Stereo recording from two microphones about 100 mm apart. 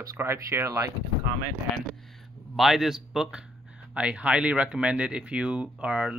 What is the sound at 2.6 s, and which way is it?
Speech, centre (ahead or behind).